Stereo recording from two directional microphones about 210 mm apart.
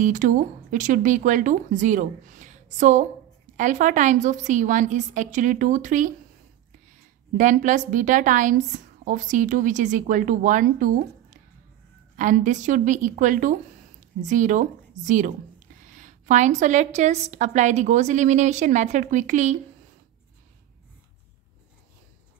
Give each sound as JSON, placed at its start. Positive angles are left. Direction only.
{"t": 0.0, "sound": "a woman's voice", "side_deg": -35}
{"t": 7.3, "sound": "a woman's voice", "side_deg": -35}